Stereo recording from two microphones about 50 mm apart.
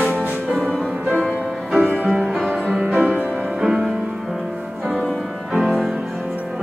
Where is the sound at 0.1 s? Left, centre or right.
Right.